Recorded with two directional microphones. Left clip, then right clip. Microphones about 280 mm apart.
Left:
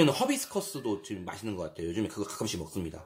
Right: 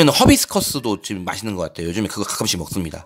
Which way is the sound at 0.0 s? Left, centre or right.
Right.